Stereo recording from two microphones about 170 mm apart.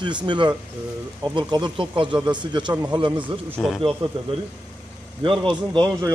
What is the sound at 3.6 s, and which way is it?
Speech, 5° left (ahead or behind).